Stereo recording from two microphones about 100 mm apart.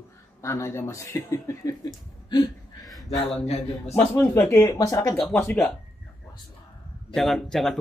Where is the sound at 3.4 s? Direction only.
90° left.